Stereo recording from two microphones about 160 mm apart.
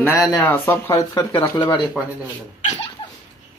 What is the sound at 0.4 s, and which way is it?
Speech, 10° left (ahead or behind).